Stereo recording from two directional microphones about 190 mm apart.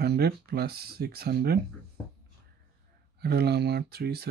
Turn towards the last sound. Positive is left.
turn(degrees=-55)  # may be behind; listen again after turning